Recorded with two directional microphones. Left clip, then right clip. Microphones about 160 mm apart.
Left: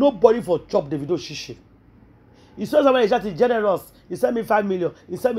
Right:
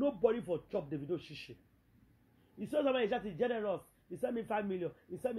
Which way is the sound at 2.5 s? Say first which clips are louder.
Left 16 dB; 20° left (ahead or behind).